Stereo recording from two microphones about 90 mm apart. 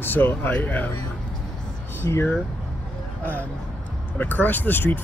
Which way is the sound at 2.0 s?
25° left (ahead or behind).